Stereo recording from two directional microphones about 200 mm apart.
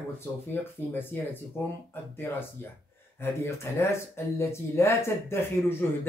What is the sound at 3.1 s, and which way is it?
Speech, 15° left (ahead or behind).